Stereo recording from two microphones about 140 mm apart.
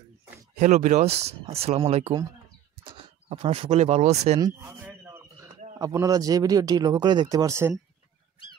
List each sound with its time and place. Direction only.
0.6 s speech: 60° right (ahead or behind)
4.4 s a sound: 25° right (ahead or behind)
5.8 s speech: 25° right (ahead or behind)